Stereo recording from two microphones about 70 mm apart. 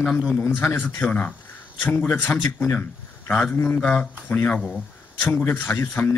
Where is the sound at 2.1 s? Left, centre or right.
Left.